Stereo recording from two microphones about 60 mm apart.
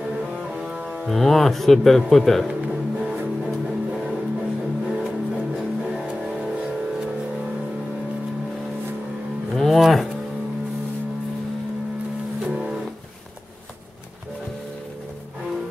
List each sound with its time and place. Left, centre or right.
0.3 s music: centre
1.0 s speech: centre
2.4 s music: centre
9.5 s cattle: centre
12.4 s music: centre